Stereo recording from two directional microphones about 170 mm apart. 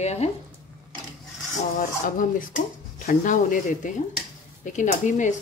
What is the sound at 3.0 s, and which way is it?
Speech, 55° left (ahead or behind).